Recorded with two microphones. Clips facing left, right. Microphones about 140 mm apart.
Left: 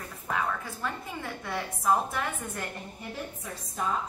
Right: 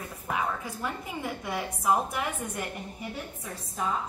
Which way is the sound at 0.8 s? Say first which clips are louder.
Right 2 dB; 15° right (ahead or behind).